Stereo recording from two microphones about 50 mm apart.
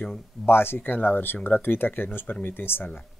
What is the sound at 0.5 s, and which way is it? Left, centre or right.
Speech, left.